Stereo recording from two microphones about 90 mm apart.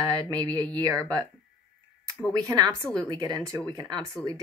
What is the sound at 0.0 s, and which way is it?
Speech, 45° right (ahead or behind).